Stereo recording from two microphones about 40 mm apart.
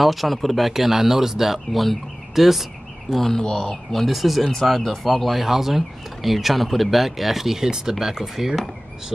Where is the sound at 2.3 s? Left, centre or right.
Centre.